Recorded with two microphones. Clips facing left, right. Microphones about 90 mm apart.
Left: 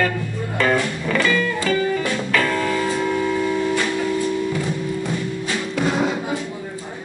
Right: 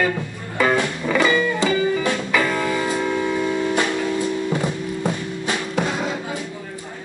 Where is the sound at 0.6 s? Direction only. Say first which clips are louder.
Right 1 dB; 15° right (ahead or behind).